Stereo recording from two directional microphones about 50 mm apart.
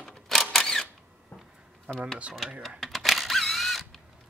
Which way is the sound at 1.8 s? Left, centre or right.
Centre.